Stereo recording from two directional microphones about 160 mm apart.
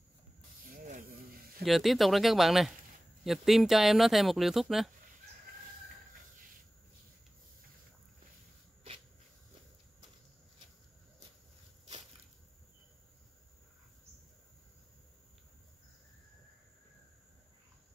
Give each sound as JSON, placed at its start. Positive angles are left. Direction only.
{"t": 0.7, "sound": "snake", "side_deg": -55}
{"t": 1.6, "sound": "speech", "side_deg": 0}